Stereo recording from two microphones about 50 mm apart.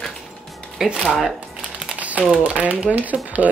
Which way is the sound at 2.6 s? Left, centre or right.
Right.